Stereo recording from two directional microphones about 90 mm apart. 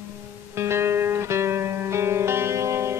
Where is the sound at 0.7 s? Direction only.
25° right (ahead or behind).